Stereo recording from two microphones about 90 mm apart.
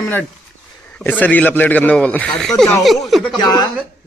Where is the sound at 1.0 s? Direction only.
20° left (ahead or behind); by 3.3 s centre (ahead or behind).